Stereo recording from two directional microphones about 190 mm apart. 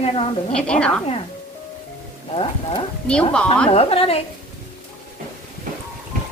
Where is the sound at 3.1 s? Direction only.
5° left (ahead or behind).